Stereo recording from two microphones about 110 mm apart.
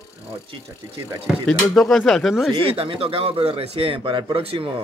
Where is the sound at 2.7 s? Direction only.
55° right (ahead or behind).